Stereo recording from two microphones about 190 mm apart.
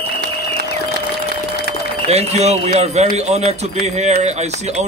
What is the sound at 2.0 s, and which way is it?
A man's voice, 35° right (ahead or behind).